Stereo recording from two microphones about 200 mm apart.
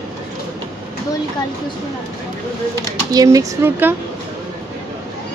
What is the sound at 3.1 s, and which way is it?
Speech, 15° right (ahead or behind).